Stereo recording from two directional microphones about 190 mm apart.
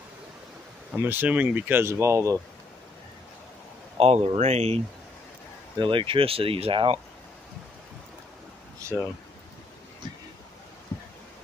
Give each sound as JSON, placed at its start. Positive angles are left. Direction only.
{"t": 0.9, "sound": "speech", "side_deg": -10}
{"t": 4.0, "sound": "speech", "side_deg": -35}
{"t": 8.9, "sound": "speech", "side_deg": -5}